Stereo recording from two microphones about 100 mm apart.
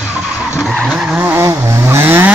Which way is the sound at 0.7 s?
Centre (ahead or behind).